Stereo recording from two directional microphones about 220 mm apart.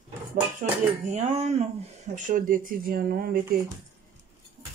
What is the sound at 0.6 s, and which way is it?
Speech, 30° right (ahead or behind).